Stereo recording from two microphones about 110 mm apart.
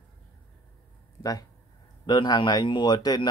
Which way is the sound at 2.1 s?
40° left (ahead or behind).